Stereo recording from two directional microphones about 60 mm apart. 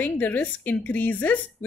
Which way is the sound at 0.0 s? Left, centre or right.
Left.